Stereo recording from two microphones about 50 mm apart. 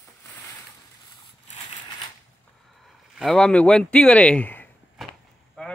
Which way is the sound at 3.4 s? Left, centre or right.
Centre.